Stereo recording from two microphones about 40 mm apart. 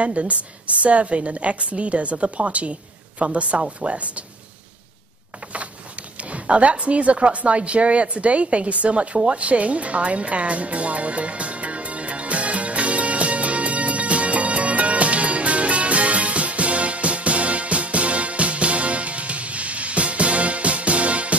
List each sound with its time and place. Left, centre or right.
0.0 s a woman's voice: right
6.3 s a woman's voice: right
9.3 s music: right